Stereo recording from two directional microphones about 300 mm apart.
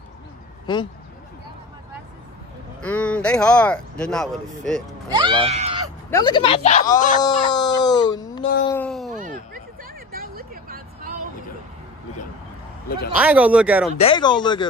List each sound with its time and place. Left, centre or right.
0.7 s speech: centre
2.8 s speech: centre
5.1 s a sound: centre
6.0 s speech: centre
7.2 s speech: centre
8.6 s a sound: centre
9.1 s a sound: right
10.1 s vehicle: right
13.1 s speech: centre
13.9 s speech: centre